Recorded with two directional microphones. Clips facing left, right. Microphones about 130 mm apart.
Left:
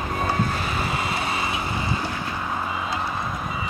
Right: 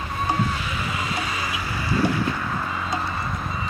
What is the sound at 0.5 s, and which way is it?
Vehicle, 45° left (ahead or behind).